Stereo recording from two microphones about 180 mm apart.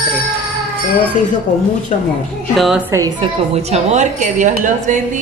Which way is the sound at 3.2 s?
35° right (ahead or behind).